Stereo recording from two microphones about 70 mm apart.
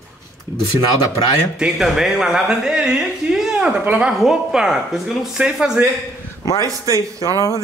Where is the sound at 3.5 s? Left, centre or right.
Right.